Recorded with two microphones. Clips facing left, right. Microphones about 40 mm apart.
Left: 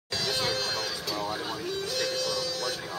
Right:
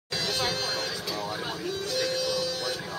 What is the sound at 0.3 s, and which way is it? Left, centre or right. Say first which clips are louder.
Music: even; centre.